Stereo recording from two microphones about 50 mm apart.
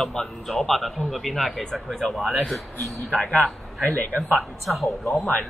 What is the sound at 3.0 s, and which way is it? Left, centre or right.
Speech, left.